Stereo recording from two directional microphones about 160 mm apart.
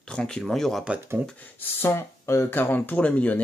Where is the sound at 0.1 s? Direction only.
5° left (ahead or behind).